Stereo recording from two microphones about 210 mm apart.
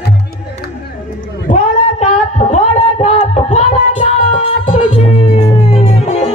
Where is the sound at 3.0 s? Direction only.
30° left (ahead or behind).